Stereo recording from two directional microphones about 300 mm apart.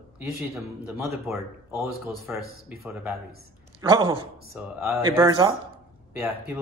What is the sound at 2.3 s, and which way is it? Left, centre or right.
Speech, centre.